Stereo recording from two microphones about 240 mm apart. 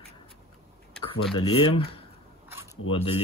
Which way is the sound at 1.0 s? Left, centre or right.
Centre.